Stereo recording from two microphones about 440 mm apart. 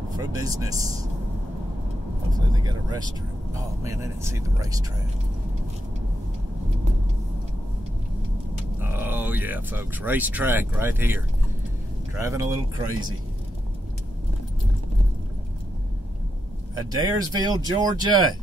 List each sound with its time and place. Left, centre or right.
0.2 s speech: centre
2.3 s speech: centre
8.9 s speech: centre
16.9 s speech: centre